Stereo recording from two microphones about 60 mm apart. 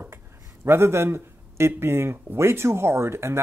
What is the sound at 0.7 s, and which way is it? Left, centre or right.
A man's voice, right.